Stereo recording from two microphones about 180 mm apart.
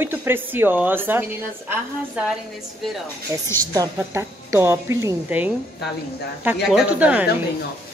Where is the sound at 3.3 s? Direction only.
15° right (ahead or behind).